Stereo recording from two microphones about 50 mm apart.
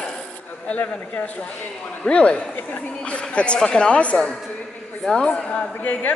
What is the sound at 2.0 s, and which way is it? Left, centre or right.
Speech, left.